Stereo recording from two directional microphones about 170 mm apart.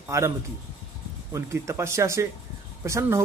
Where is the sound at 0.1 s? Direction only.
15° right (ahead or behind).